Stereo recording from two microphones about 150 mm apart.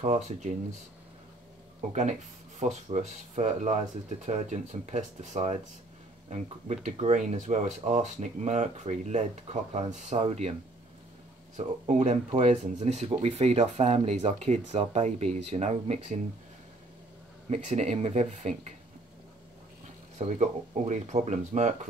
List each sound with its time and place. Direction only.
0.0 s speech: 50° right (ahead or behind)
1.8 s speech: 50° right (ahead or behind)
11.5 s speech: 50° right (ahead or behind)
17.5 s speech: 50° right (ahead or behind)
20.2 s speech: 50° right (ahead or behind)